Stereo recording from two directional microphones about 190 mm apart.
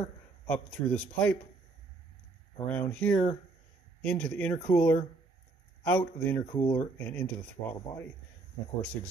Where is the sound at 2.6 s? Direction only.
5° left (ahead or behind).